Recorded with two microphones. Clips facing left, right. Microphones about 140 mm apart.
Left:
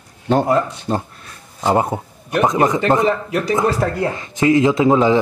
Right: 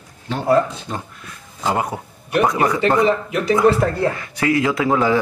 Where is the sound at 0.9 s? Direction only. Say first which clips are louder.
Left 7 dB; 30° left (ahead or behind).